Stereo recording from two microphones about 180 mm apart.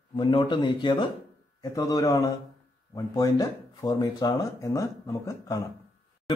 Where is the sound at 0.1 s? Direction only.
25° left (ahead or behind).